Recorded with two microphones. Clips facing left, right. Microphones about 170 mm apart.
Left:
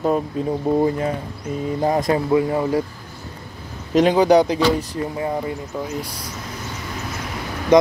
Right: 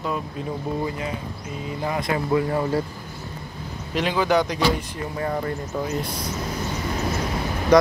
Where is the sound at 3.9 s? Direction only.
45° left (ahead or behind).